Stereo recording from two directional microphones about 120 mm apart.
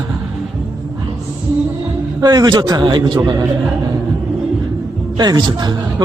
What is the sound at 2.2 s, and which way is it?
Speech, 35° right (ahead or behind).